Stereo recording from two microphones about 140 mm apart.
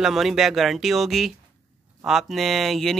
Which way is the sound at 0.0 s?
Centre (ahead or behind).